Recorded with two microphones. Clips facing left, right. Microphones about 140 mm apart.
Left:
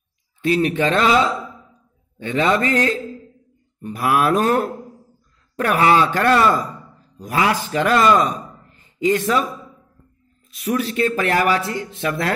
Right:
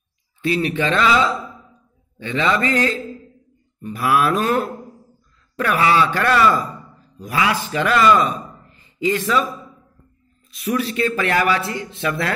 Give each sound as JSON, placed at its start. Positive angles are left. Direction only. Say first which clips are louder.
{"t": 0.4, "sound": "a man's voice", "louder": "left 2 dB", "side_deg": 45}
{"t": 3.8, "sound": "a man's voice", "louder": "even", "side_deg": 50}
{"t": 10.5, "sound": "a man's voice", "louder": "even", "side_deg": 45}